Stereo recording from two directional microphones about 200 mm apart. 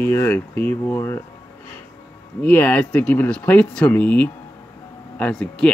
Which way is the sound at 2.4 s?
10° left (ahead or behind).